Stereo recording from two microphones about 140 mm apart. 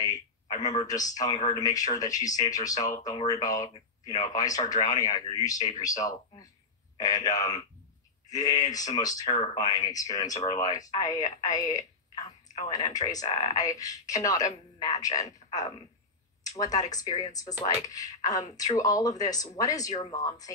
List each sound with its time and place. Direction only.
0.0 s speech: 25° left (ahead or behind)
16.4 s speech: 25° left (ahead or behind)